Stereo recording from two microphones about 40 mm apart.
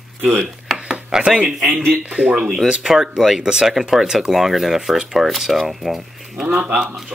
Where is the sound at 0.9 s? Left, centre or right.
Centre.